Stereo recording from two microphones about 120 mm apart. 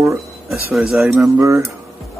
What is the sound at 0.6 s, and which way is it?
Speech, 5° right (ahead or behind).